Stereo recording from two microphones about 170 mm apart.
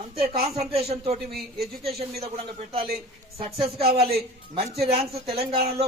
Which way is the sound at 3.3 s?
35° right (ahead or behind).